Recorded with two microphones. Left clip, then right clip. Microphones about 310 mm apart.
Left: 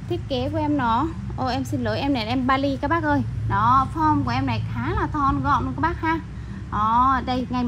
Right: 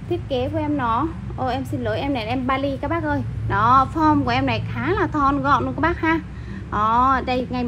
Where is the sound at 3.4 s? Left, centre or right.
Centre.